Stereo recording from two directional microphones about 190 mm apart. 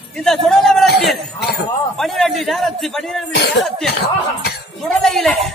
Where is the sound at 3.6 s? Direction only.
Centre (ahead or behind).